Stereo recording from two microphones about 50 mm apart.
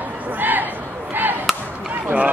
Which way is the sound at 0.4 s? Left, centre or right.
Right.